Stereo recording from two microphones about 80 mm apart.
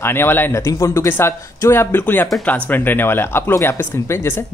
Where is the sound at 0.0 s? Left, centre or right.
Left.